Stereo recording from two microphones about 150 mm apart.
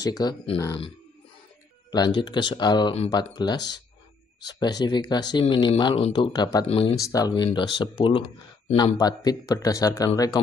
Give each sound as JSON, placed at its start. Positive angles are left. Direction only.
{"t": 0.0, "sound": "speech", "side_deg": 25}
{"t": 1.9, "sound": "speech", "side_deg": 30}